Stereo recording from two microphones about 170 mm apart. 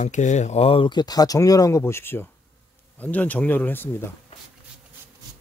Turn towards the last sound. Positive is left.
turn(degrees=10)  # may be behind; listen again after turning